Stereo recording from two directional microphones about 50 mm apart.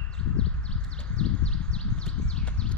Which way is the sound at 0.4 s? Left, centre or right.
Left.